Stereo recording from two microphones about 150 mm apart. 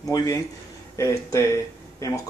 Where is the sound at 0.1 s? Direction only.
25° left (ahead or behind).